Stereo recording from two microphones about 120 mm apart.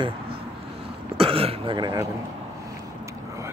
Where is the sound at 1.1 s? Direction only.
50° right (ahead or behind).